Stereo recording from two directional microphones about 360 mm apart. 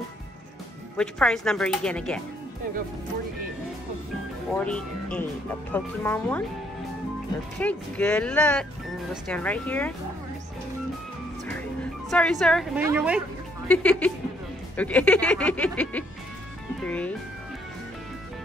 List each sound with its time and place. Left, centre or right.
0.9 s speech: centre
4.5 s speech: centre
7.6 s speech: centre
12.1 s speech: centre